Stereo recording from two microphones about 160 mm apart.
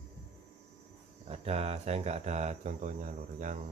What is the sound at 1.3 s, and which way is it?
Speech, 40° right (ahead or behind).